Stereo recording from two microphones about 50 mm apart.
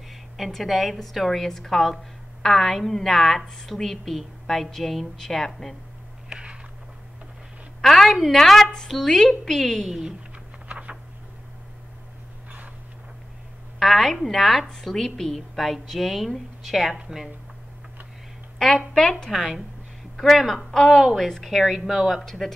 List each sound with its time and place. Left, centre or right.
0.1 s a woman's voice: centre
6.2 s a sound: centre
7.8 s a woman's voice: centre
10.7 s a sound: right
13.7 s a woman's voice: centre
18.6 s speech: centre
18.9 s a woman's voice: centre
22.2 s a woman's voice: centre